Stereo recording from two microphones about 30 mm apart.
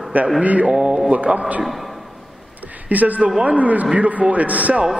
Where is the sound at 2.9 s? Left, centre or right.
Right.